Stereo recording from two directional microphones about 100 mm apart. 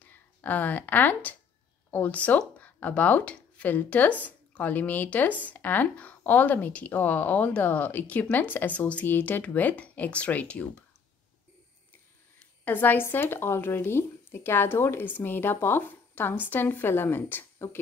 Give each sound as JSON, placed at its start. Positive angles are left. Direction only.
{"t": 0.1, "sound": "speech", "side_deg": 15}
{"t": 12.4, "sound": "speech", "side_deg": 20}